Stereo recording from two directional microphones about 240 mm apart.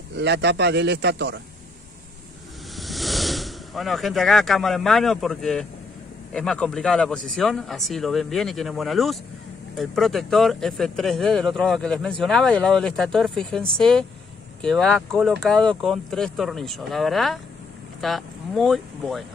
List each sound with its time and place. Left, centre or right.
0.1 s speech: right
2.7 s speech: centre